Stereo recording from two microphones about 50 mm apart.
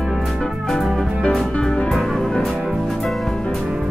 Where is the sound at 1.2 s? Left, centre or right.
Centre.